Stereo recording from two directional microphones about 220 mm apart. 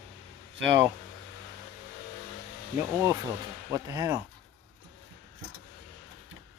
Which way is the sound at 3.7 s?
15° right (ahead or behind).